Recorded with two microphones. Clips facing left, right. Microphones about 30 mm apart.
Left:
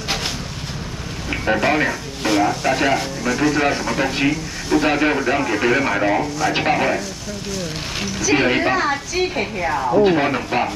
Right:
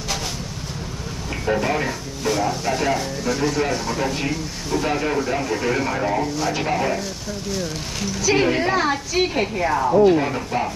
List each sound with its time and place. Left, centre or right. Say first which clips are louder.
1.3 s a sound: left 3 dB; left
1.7 s speech: left 5 dB; left
3.3 s speech: left 4 dB; left
3.5 s speech: left 4 dB; left
4.6 s speech: left 6 dB; left
4.9 s speech: left 4 dB; left
8.4 s speech: left 3 dB; left
8.7 s a woman's voice: even; centre
10.0 s speech: left 1 dB; left